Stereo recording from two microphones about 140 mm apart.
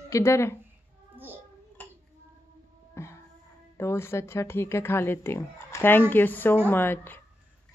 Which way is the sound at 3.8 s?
20° left (ahead or behind).